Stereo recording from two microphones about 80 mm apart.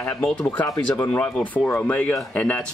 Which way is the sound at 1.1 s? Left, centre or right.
Centre.